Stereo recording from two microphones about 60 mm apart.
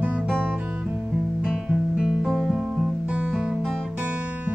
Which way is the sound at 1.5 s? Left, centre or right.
Centre.